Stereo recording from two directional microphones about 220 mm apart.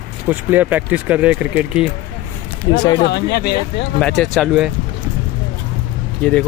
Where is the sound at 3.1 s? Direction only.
45° left (ahead or behind).